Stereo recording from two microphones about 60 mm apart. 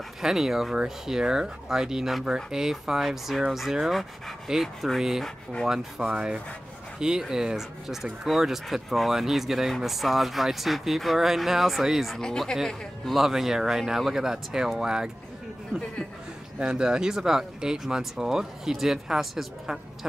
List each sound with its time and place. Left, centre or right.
0.2 s speech: centre
5.2 s speech: centre
6.0 s speech: centre
12.2 s speech: centre
16.5 s speech: centre